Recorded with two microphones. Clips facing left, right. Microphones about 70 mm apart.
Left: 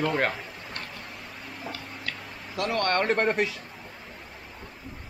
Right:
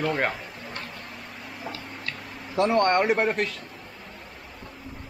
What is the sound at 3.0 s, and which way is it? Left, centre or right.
Speech, centre.